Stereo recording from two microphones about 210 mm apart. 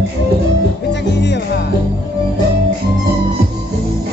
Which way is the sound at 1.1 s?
55° left (ahead or behind).